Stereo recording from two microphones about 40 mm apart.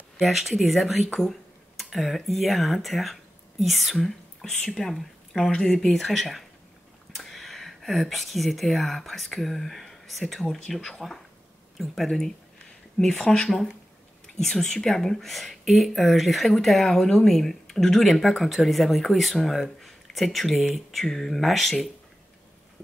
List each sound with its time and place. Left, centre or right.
0.2 s speech: centre
5.5 s speech: centre
5.9 s speech: centre
11.0 s speech: centre
13.0 s speech: centre